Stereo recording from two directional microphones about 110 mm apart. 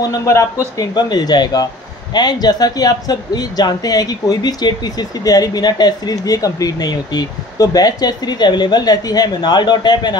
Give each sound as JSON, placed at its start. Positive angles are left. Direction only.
{"t": 0.1, "sound": "speech", "side_deg": 25}
{"t": 0.7, "sound": "speech", "side_deg": 40}